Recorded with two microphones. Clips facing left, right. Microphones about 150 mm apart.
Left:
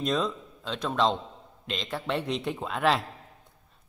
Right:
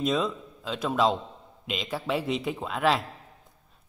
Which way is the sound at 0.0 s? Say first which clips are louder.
Right 1 dB; 5° right (ahead or behind).